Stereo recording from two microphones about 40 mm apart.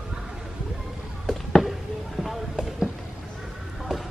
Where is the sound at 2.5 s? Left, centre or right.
Right.